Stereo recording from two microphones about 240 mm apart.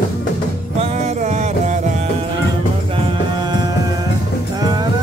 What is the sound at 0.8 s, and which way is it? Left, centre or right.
Music, right.